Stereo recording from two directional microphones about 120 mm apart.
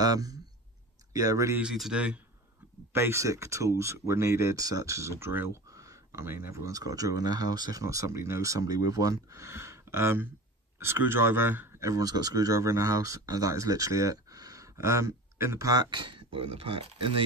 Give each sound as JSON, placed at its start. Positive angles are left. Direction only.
{"t": 0.0, "sound": "speech", "side_deg": -30}
{"t": 1.6, "sound": "speech", "side_deg": -5}
{"t": 2.9, "sound": "speech", "side_deg": -20}